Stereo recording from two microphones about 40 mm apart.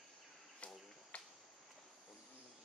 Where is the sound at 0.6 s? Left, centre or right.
Left.